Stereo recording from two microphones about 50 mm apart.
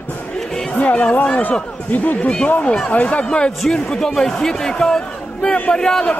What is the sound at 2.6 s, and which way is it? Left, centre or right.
Speech, left.